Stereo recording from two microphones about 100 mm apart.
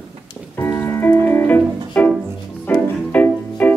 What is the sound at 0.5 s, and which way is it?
Music, 25° left (ahead or behind).